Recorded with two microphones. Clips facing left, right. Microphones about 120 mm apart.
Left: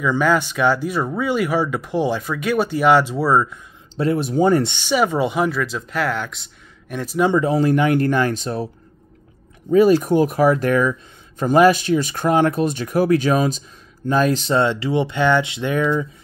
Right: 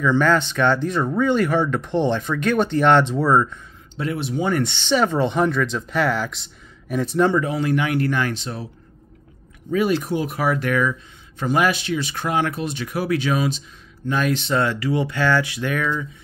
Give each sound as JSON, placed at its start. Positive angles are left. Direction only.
{"t": 0.0, "sound": "speech", "side_deg": 10}
{"t": 3.9, "sound": "speech", "side_deg": 35}
{"t": 4.6, "sound": "speech", "side_deg": 10}
{"t": 7.4, "sound": "speech", "side_deg": 40}
{"t": 9.7, "sound": "speech", "side_deg": 40}
{"t": 14.6, "sound": "speech", "side_deg": 25}